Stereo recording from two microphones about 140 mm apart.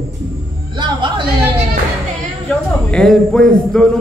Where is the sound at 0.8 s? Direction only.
35° right (ahead or behind).